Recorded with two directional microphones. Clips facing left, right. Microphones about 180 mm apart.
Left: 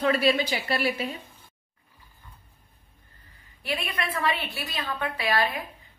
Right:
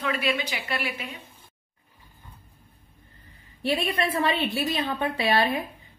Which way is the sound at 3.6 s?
30° right (ahead or behind).